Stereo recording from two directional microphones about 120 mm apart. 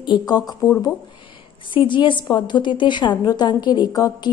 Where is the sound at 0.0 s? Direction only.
35° left (ahead or behind).